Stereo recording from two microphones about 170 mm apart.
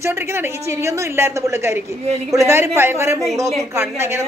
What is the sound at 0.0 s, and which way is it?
A woman's voice, 15° right (ahead or behind).